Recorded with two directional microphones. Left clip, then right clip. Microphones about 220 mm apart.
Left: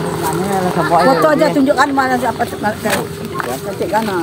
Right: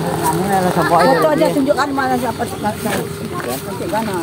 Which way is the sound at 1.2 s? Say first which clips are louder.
Left 2 dB; 45° left (ahead or behind).